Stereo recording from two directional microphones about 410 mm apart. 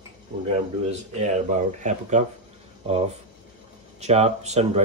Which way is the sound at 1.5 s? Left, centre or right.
Centre.